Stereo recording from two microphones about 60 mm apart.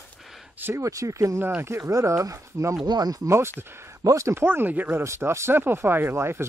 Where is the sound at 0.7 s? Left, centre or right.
Right.